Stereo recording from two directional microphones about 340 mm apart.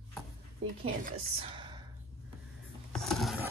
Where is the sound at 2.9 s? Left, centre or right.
Centre.